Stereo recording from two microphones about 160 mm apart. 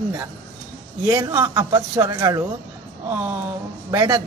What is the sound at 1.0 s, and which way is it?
Speech, 20° right (ahead or behind).